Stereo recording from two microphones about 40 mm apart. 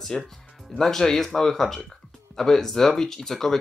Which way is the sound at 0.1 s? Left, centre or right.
Centre.